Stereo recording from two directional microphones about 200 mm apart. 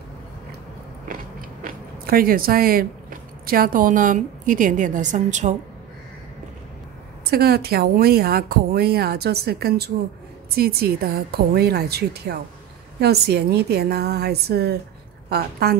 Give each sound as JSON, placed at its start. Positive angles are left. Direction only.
{"t": 1.6, "sound": "speech", "side_deg": -45}
{"t": 7.2, "sound": "speech", "side_deg": -50}